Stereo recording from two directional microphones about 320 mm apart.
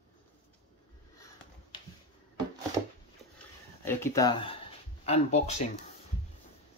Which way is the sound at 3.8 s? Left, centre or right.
Centre.